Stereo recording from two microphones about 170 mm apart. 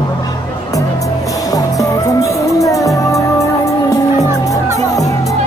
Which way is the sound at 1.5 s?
20° left (ahead or behind).